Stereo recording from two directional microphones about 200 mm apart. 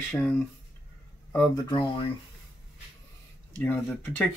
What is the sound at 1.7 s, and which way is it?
Speech, 25° left (ahead or behind).